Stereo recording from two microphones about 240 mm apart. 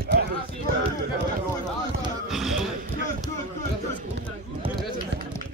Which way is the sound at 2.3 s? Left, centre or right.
Centre.